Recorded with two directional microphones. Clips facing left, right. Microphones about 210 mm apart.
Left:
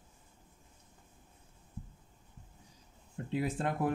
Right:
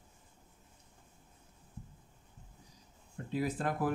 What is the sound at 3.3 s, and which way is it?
Speech, 25° left (ahead or behind).